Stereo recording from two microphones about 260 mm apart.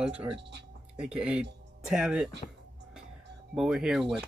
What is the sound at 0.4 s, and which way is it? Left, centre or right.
Speech, right.